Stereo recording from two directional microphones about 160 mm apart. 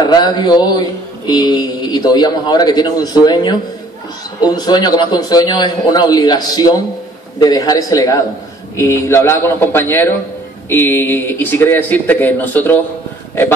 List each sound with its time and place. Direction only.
0.0 s mantra: 25° left (ahead or behind)
8.7 s speech: 15° left (ahead or behind)